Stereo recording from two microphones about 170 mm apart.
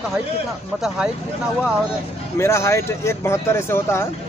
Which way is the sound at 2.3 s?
15° left (ahead or behind).